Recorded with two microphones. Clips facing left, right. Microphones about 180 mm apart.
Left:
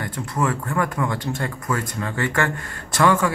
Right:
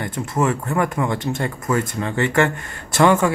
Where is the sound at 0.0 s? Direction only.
25° right (ahead or behind).